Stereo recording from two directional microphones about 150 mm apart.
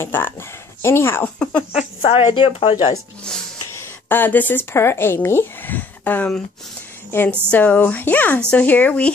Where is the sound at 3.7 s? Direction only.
15° left (ahead or behind).